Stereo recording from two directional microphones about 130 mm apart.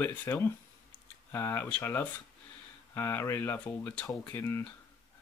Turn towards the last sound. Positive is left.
turn(degrees=20)  # may be behind; listen again after turning